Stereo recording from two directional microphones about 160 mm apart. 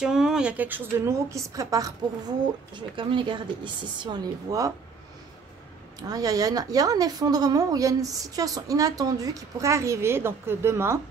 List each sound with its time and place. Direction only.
0.0 s a woman's voice: 5° right (ahead or behind); by 4.7 s 20° right (ahead or behind)
5.9 s speech: 25° right (ahead or behind)